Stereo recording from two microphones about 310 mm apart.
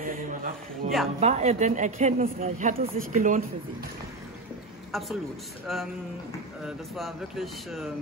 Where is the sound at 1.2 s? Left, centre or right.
Right.